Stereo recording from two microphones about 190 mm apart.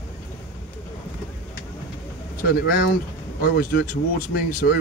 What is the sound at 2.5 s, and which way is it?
Speech, 50° left (ahead or behind).